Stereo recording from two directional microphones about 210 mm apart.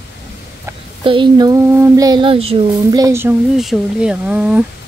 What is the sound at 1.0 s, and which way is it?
Speech, 25° right (ahead or behind).